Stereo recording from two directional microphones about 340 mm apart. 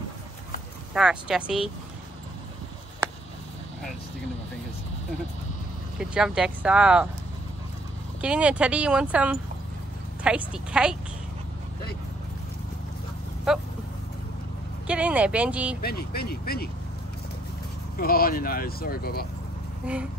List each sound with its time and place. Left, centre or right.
0.9 s speech: centre
3.0 s a sound: centre
5.9 s speech: centre
8.2 s speech: centre
13.5 s speech: centre
14.9 s speech: centre
15.8 s speech: left
17.9 s speech: left
19.9 s speech: centre